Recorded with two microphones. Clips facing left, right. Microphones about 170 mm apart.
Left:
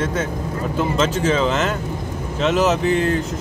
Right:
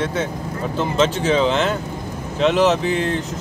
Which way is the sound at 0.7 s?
5° left (ahead or behind).